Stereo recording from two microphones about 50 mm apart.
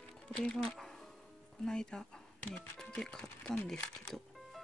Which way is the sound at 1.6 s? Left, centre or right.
Centre.